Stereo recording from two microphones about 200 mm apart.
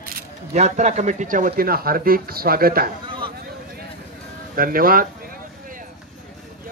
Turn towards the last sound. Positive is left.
turn(degrees=-45)  # may be behind; listen again after turning